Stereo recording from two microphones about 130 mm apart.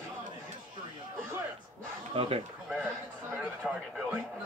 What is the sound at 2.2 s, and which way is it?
Chicken, 50° right (ahead or behind).